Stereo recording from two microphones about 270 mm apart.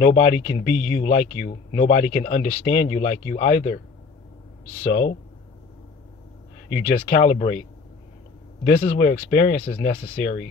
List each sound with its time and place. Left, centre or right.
0.0 s speech: left
6.7 s speech: left
8.6 s speech: left